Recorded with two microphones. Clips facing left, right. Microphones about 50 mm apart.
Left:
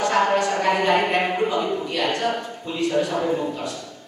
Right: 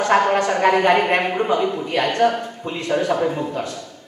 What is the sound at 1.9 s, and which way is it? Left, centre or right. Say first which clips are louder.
A woman's voice: right 5 dB; right.